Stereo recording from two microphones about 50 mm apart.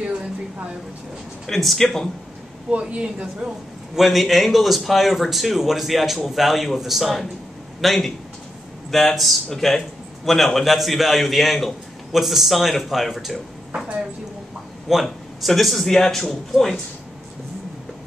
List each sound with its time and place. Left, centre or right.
1.5 s speech: centre
2.7 s a woman's voice: right
3.9 s speech: centre
15.0 s speech: centre